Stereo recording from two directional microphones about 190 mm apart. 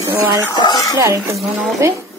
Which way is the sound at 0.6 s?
20° left (ahead or behind).